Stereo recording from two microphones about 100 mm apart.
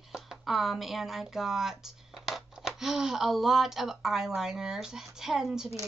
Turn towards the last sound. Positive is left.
turn(degrees=-5)  # may be behind; listen again after turning